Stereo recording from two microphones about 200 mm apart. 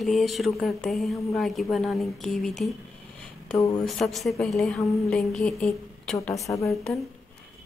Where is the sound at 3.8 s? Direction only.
Centre (ahead or behind).